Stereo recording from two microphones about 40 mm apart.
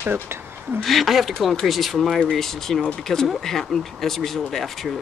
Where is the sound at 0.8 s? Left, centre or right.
Centre.